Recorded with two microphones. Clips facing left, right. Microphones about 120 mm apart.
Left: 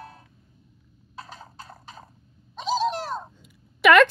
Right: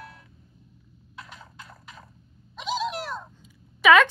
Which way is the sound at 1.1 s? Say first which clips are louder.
Left 3 dB; 35° left (ahead or behind).